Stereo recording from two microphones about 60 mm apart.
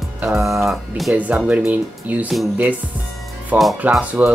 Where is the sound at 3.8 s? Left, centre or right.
Right.